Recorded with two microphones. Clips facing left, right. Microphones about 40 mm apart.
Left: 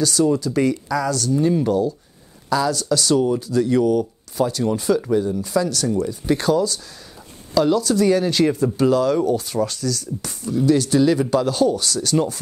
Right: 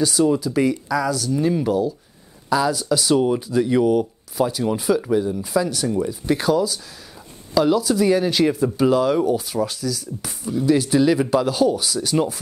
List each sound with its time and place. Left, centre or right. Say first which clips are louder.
0.0 s speech: even; centre